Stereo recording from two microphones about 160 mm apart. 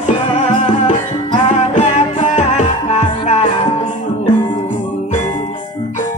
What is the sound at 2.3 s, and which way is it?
Music, 50° left (ahead or behind).